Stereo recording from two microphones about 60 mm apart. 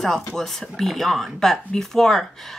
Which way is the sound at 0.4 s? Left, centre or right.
Centre.